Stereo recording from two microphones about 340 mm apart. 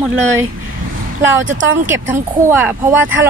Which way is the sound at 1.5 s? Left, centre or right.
Right.